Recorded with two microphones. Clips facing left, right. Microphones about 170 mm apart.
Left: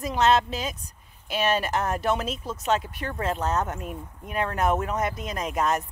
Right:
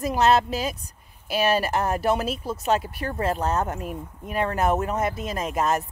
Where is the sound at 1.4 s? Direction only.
35° right (ahead or behind).